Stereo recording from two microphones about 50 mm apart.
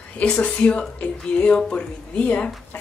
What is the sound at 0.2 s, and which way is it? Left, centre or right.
Speech, left.